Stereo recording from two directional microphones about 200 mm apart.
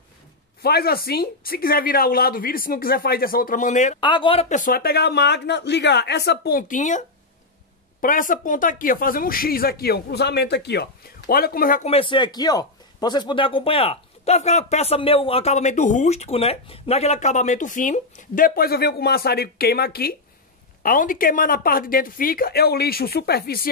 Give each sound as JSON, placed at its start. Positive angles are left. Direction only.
{"t": 0.6, "sound": "speech", "side_deg": 50}
{"t": 4.0, "sound": "speech", "side_deg": 25}
{"t": 11.8, "sound": "speech", "side_deg": 30}